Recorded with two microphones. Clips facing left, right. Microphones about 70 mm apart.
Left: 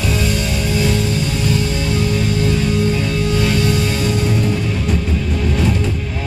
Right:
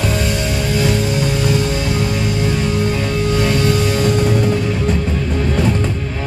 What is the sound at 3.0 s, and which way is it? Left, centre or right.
Music, right.